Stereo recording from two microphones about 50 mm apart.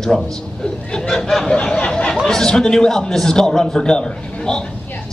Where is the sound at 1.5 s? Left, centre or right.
Centre.